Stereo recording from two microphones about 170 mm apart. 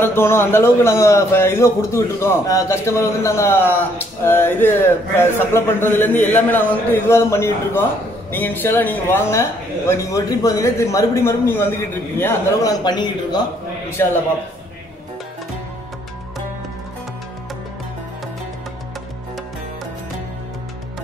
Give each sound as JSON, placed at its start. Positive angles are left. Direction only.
{"t": 0.0, "sound": "a man's voice", "side_deg": 15}
{"t": 12.8, "sound": "speech", "side_deg": 25}
{"t": 13.8, "sound": "a man's voice", "side_deg": 15}